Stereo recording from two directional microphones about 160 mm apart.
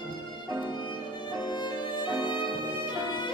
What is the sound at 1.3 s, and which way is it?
Music, 30° left (ahead or behind).